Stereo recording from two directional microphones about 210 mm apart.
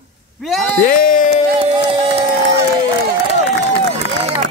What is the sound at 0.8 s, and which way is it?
Speech, 40° left (ahead or behind).